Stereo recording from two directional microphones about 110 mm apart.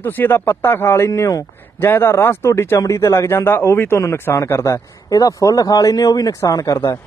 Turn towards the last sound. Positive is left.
turn(degrees=25)  # may be behind; listen again after turning